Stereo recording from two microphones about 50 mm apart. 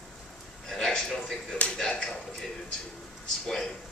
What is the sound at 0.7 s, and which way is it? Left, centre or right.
Speech, centre.